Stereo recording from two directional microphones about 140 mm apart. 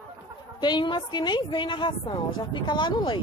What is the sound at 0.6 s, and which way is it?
Speech, 30° left (ahead or behind).